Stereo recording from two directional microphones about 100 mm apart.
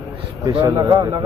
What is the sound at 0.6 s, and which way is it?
Speech, 45° right (ahead or behind).